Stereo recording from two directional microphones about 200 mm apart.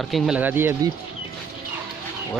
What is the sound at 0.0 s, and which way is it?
Speech, centre (ahead or behind).